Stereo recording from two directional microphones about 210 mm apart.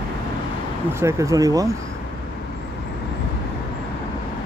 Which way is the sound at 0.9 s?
15° right (ahead or behind).